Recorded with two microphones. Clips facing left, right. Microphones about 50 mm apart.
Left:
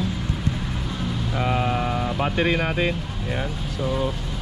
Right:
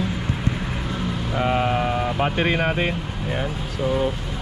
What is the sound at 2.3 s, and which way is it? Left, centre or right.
Speech, right.